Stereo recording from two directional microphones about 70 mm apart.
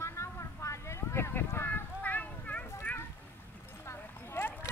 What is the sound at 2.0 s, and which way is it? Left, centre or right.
Clip-clop, left.